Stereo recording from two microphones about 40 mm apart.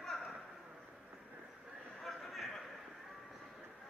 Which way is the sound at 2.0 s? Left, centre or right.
Centre.